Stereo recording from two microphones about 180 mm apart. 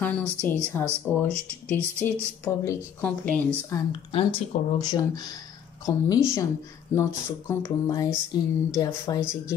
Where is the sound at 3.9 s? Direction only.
30° left (ahead or behind).